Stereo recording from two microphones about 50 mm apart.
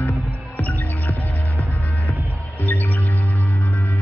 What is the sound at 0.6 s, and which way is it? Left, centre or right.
Music, left.